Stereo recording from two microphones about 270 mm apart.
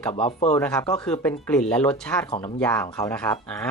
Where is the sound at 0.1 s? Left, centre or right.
Left.